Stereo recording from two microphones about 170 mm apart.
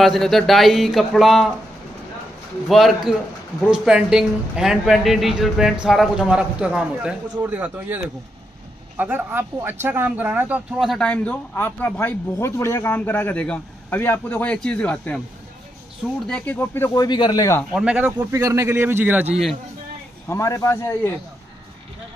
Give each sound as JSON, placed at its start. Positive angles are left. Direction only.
{"t": 0.0, "sound": "a man's voice", "side_deg": 0}
{"t": 2.7, "sound": "a man's voice", "side_deg": 0}
{"t": 16.3, "sound": "speech", "side_deg": 10}
{"t": 17.7, "sound": "speech", "side_deg": -5}
{"t": 20.2, "sound": "speech", "side_deg": 20}